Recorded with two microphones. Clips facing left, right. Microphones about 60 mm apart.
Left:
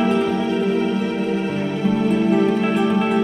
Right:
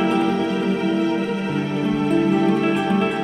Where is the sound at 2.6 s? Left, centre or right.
Centre.